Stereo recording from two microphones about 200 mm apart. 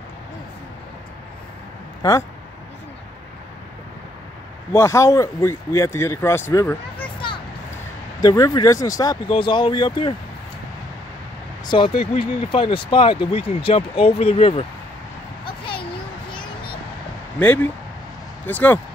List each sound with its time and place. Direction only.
4.7 s speech: 15° left (ahead or behind)
8.2 s speech: 20° left (ahead or behind)
11.7 s speech: 25° left (ahead or behind)
15.4 s a sound: 25° left (ahead or behind)
17.4 s speech: 10° left (ahead or behind)